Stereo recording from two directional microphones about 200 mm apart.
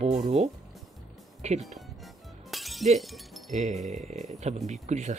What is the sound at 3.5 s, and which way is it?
Speech, 35° right (ahead or behind).